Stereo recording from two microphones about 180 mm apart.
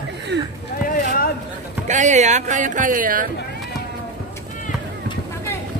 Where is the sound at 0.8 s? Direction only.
55° left (ahead or behind).